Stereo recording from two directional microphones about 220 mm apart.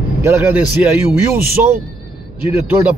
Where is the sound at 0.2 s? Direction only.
10° right (ahead or behind).